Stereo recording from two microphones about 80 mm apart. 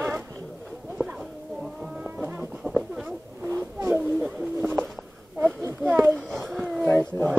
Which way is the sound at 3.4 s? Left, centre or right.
Right.